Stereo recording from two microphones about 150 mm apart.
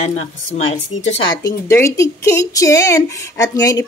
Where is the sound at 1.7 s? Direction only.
20° left (ahead or behind).